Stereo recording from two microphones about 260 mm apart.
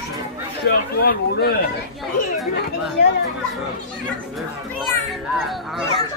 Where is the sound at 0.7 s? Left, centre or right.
Left.